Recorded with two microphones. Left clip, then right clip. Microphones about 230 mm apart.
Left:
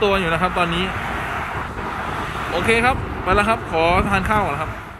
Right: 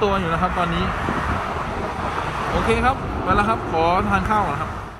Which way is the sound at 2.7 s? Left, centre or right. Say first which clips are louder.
Left 4 dB; centre.